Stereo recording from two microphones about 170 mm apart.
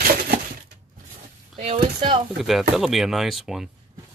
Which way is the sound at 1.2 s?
40° right (ahead or behind).